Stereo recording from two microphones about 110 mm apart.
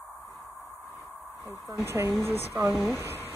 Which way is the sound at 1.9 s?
25° right (ahead or behind).